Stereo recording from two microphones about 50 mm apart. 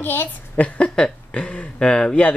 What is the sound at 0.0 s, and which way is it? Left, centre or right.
Speech, left.